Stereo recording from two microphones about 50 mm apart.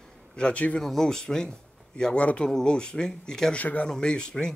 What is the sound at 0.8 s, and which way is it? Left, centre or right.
Speech, centre.